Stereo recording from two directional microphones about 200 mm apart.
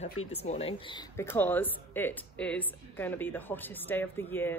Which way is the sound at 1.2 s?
10° left (ahead or behind).